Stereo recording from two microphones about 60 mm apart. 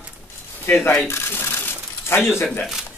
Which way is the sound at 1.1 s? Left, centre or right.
Left.